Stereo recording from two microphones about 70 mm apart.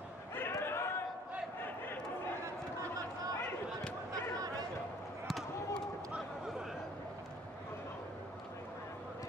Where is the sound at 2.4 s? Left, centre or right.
Right.